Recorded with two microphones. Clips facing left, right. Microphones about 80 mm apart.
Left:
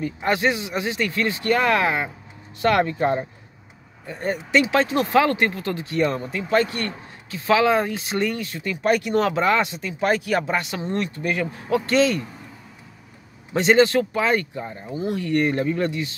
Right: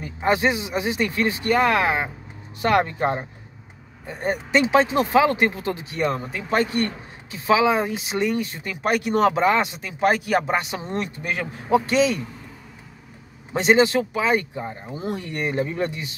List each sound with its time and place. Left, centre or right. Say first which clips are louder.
0.0 s speech: right 1 dB; right
8.4 s speech: even; right
13.5 s a man's voice: left 1 dB; centre
15.3 s a man's voice: left 5 dB; centre